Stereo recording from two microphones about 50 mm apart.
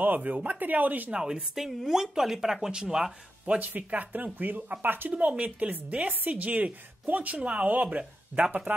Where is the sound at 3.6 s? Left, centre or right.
Right.